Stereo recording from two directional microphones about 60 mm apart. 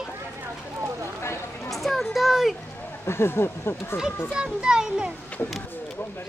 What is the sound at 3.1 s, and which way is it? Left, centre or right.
Speech, left.